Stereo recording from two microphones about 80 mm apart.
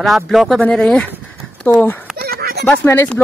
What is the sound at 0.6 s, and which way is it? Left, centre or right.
Speech, centre.